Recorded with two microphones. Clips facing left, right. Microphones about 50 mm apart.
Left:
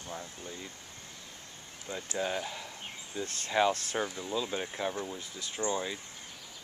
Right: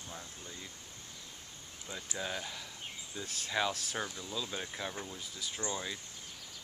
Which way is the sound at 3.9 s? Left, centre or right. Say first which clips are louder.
Left 6 dB; left.